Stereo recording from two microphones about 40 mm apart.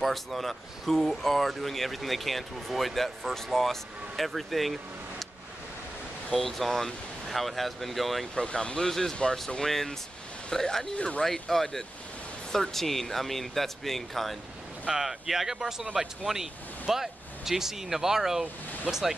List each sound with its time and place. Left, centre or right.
0.0 s speech: centre
6.4 s speech: centre
8.4 s speech: left
8.8 s speech: centre
10.5 s speech: centre
11.0 s speech: left
11.3 s speech: centre
14.9 s speech: centre